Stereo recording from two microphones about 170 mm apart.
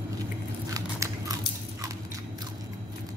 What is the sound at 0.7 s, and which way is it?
Biting, 20° right (ahead or behind).